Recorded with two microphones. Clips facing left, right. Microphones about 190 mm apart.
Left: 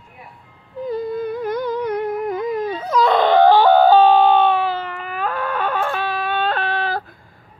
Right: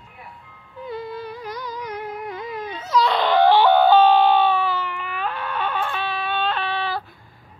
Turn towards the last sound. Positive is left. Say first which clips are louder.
# left 3 dB
turn(degrees=45)  # may be behind; listen again after turning